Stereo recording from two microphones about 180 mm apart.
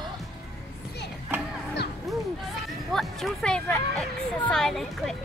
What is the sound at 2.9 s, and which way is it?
Music, centre (ahead or behind).